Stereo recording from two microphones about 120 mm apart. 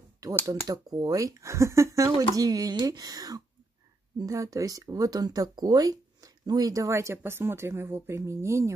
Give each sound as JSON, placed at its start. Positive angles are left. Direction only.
{"t": 0.2, "sound": "speech", "side_deg": -30}